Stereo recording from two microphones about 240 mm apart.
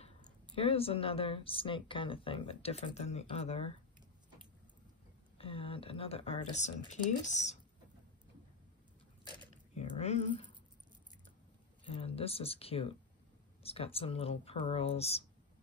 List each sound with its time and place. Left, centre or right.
0.6 s speech: left
5.4 s speech: left
9.3 s a sound: centre
11.8 s speech: left